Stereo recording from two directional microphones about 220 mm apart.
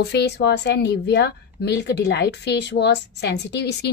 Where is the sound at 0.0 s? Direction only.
50° left (ahead or behind).